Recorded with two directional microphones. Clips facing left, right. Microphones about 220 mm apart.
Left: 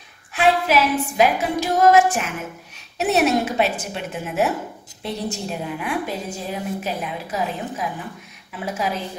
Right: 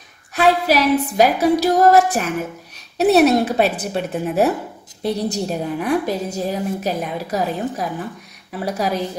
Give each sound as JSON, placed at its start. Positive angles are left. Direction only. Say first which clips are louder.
{"t": 0.3, "sound": "a woman's voice", "louder": "right 2 dB", "side_deg": -40}